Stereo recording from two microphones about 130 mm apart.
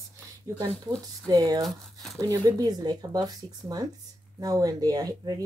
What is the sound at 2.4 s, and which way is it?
Speech, 30° right (ahead or behind).